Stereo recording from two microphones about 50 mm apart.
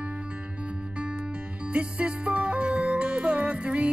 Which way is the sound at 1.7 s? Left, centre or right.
Right.